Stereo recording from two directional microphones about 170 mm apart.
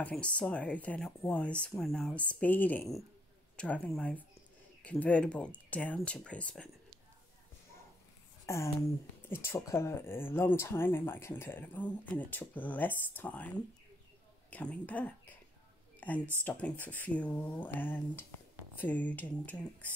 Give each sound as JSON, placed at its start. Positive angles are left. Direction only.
{"t": 0.0, "sound": "speech", "side_deg": 5}
{"t": 8.5, "sound": "speech", "side_deg": 15}